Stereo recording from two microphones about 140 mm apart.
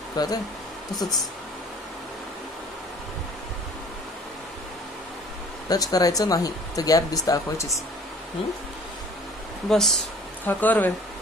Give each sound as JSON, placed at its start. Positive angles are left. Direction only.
{"t": 0.2, "sound": "speech", "side_deg": 30}
{"t": 5.7, "sound": "speech", "side_deg": 25}
{"t": 9.7, "sound": "speech", "side_deg": 5}